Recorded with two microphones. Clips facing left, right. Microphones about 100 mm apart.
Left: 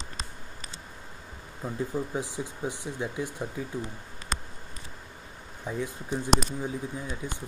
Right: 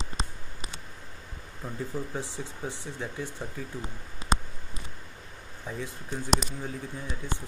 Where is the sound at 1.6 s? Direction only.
10° left (ahead or behind).